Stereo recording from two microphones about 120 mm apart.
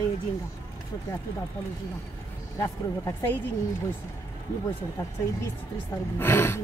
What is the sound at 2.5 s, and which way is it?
Speech, 25° left (ahead or behind).